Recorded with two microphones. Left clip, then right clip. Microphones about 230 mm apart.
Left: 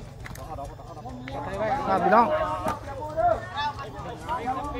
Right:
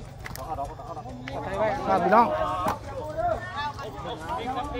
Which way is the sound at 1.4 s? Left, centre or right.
Centre.